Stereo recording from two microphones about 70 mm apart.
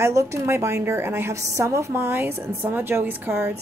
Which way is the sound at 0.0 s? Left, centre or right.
Right.